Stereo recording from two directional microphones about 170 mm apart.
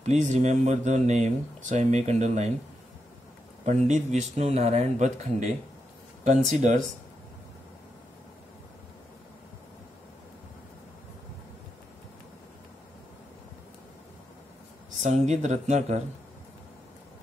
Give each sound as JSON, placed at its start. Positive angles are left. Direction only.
{"t": 0.0, "sound": "speech", "side_deg": -40}
{"t": 3.6, "sound": "speech", "side_deg": -45}
{"t": 15.0, "sound": "speech", "side_deg": -40}